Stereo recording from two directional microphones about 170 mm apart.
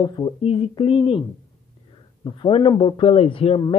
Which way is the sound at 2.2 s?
30° left (ahead or behind).